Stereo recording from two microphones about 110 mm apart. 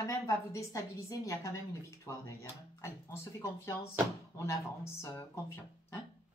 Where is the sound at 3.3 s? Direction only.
25° left (ahead or behind).